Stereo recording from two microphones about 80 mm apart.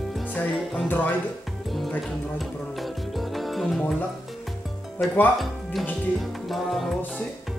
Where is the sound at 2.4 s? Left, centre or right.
Centre.